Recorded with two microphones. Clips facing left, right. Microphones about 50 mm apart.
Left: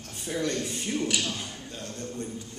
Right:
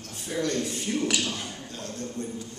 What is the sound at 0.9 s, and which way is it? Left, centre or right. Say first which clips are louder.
Speech: even; centre.